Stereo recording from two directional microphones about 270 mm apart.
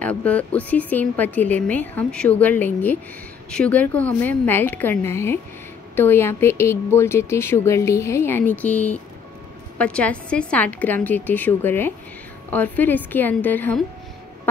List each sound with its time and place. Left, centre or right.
0.0 s speech: centre